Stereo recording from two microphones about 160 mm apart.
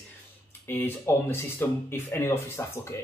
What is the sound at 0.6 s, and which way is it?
Speech, 15° left (ahead or behind).